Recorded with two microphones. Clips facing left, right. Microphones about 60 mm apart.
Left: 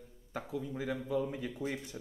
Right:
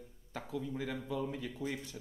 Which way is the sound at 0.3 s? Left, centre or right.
Centre.